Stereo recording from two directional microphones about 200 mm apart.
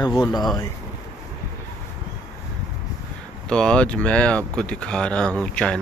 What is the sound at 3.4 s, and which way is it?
Speech, 5° left (ahead or behind).